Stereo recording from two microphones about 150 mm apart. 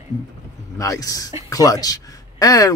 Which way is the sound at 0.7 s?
20° left (ahead or behind).